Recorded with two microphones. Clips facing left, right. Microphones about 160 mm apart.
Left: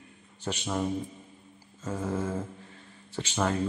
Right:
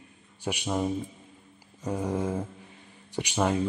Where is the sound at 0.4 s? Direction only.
10° right (ahead or behind).